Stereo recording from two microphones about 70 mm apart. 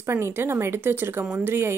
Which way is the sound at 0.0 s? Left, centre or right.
Right.